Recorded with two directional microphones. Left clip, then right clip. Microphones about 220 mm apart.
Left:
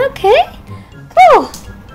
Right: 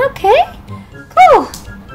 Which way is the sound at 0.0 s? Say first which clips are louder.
Even; 15° left (ahead or behind).